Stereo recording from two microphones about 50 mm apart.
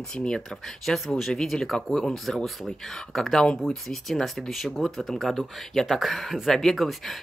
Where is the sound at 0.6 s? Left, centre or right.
Centre.